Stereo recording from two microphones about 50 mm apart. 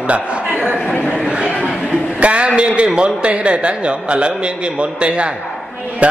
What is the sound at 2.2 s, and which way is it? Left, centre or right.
A man's voice, right.